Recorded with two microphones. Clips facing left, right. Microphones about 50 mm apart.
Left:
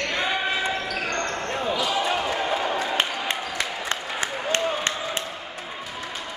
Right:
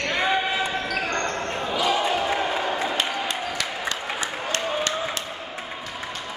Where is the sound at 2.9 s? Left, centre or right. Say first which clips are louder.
Even; left.